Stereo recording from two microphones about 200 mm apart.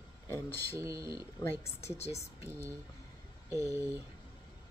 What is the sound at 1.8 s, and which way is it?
Speech, 30° left (ahead or behind).